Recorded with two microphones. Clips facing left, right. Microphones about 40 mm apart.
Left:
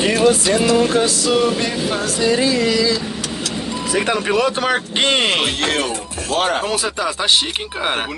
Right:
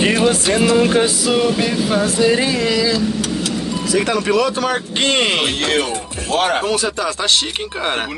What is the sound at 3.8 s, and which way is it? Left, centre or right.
Speech, left.